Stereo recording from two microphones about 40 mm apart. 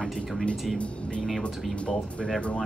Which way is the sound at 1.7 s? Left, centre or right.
Left.